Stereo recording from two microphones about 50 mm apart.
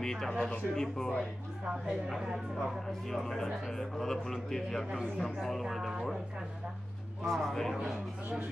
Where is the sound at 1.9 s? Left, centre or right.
Centre.